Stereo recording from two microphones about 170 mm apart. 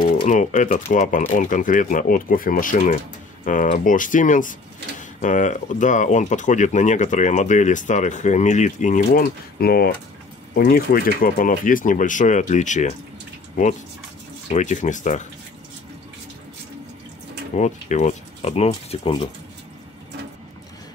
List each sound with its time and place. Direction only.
0.3 s speech: 45° left (ahead or behind)
14.5 s speech: 45° left (ahead or behind)
17.6 s speech: 45° left (ahead or behind)